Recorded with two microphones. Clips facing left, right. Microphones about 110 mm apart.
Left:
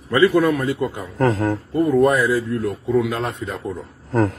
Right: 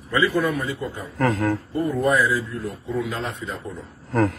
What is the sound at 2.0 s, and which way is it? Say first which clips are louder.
A man's voice: left 2 dB; 55° left (ahead or behind).